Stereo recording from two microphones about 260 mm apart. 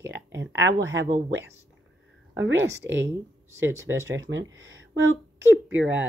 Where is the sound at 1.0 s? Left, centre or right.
Right.